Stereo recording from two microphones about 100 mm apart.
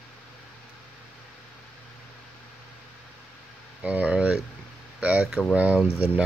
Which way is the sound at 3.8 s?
15° right (ahead or behind).